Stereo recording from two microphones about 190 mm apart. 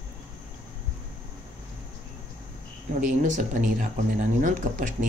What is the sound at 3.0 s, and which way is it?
Speech, 40° right (ahead or behind).